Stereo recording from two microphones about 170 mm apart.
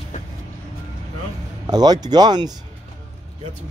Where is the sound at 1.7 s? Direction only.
25° right (ahead or behind).